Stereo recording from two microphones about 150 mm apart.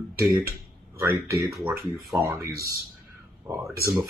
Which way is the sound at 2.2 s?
20° right (ahead or behind).